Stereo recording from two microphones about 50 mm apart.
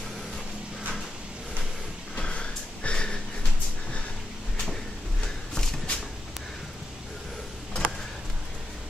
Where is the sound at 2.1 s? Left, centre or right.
Left.